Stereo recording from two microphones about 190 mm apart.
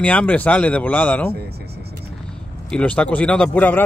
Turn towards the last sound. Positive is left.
turn(degrees=5)  # may be behind; listen again after turning